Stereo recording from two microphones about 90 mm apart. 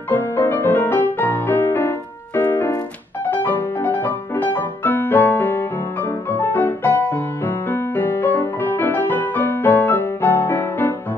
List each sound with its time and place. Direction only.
0.1 s music: 20° left (ahead or behind)